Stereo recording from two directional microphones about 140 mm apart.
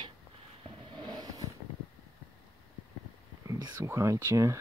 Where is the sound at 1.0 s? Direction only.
25° right (ahead or behind).